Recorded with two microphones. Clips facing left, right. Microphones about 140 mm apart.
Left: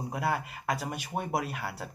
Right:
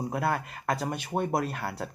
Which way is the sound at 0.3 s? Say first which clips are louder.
Right 2 dB; 10° left (ahead or behind).